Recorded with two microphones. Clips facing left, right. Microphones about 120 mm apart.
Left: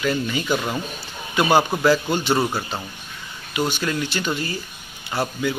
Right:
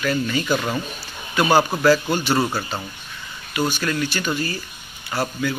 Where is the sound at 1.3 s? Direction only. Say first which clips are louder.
Even; 20° left (ahead or behind).